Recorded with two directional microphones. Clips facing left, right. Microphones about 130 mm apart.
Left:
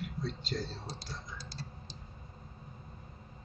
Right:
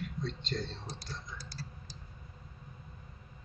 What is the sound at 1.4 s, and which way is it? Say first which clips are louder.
Tick-tock: left 1 dB; 25° left (ahead or behind).